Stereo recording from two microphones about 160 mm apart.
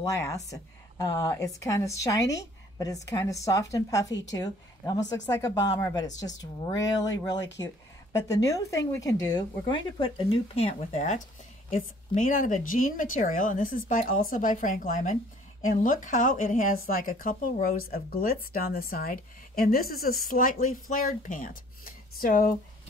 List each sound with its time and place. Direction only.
0.0 s a woman's voice: 20° left (ahead or behind); by 22.5 s 60° left (ahead or behind)